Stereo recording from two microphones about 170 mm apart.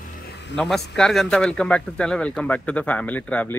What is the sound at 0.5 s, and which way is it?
Speech, centre (ahead or behind).